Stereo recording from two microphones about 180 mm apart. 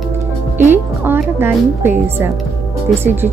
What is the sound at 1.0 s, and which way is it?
Speech, 10° right (ahead or behind).